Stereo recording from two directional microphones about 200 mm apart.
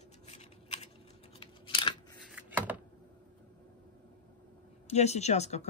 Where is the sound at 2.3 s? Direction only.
10° right (ahead or behind).